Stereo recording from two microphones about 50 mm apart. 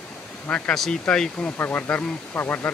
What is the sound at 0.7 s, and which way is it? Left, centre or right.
Speech, centre.